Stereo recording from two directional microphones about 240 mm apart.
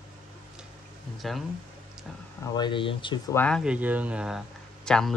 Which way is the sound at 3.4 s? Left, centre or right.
Centre.